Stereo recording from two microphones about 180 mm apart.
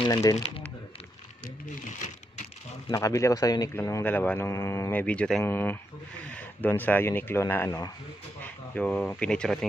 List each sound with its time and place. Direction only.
0.0 s speech: 20° left (ahead or behind)
2.9 s speech: 15° left (ahead or behind)